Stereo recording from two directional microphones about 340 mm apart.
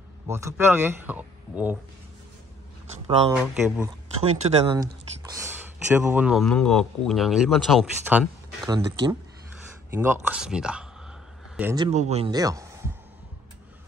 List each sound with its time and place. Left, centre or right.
0.3 s speech: centre
3.3 s speech: centre
4.4 s speech: centre
5.3 s speech: centre